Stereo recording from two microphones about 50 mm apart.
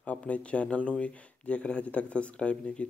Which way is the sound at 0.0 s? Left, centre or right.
Left.